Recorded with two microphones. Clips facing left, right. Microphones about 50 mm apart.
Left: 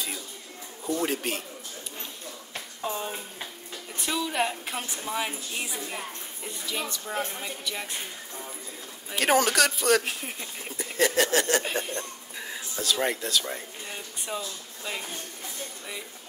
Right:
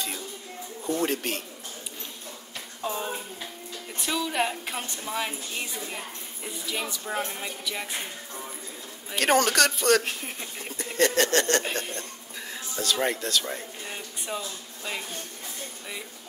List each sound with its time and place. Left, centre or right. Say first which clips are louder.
1.0 s speech: right 1 dB; centre
2.8 s speech: right 1 dB; centre
9.1 s speech: even; centre
11.9 s a sound: left 2 dB; centre